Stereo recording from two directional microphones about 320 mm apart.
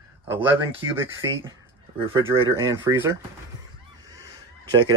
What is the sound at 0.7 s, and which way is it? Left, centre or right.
Speech, centre.